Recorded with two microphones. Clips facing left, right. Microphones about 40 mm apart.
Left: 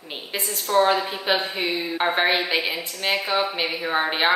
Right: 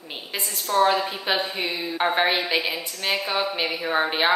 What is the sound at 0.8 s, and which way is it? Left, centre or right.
A woman's voice, centre.